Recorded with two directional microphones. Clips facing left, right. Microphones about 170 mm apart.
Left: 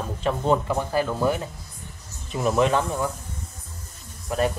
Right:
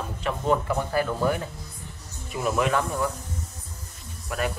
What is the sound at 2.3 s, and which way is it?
Speech, 25° left (ahead or behind).